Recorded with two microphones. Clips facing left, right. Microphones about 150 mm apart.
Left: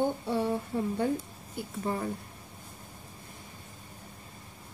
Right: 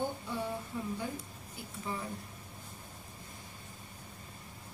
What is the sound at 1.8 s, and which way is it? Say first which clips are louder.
Speech: left 7 dB; 50° left (ahead or behind).